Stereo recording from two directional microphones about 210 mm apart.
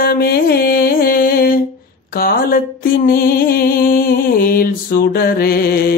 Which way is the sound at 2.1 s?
45° left (ahead or behind).